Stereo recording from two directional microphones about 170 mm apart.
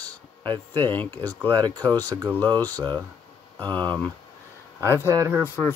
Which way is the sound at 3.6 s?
10° left (ahead or behind).